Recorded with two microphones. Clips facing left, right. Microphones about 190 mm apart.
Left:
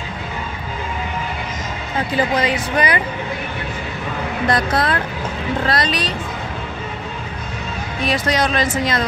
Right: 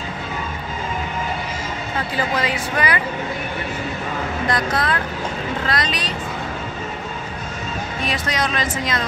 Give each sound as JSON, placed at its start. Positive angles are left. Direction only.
{"t": 2.3, "sound": "speech", "side_deg": 20}
{"t": 4.5, "sound": "speech", "side_deg": 35}
{"t": 8.1, "sound": "speech", "side_deg": 35}